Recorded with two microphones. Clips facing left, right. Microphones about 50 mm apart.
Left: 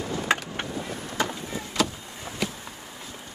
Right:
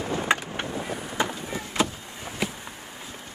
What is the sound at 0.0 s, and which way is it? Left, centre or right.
Skateboard, right.